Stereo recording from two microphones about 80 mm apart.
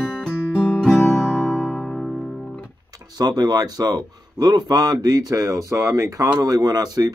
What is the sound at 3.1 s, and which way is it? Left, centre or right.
Speech, right.